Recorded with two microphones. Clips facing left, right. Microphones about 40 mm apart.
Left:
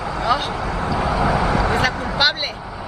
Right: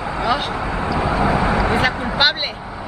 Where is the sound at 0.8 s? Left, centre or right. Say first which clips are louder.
Right 1 dB; right.